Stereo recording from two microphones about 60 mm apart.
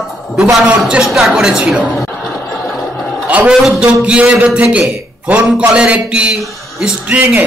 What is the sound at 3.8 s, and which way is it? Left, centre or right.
A man's voice, centre.